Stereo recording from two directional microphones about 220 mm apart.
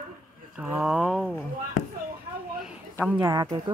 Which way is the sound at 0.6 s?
5° right (ahead or behind).